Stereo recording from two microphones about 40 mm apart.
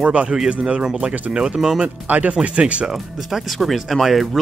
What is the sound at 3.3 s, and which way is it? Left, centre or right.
Speech, centre.